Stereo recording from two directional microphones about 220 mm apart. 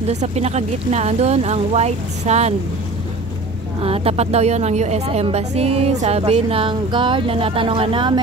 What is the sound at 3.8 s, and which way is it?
A woman's voice, 25° right (ahead or behind).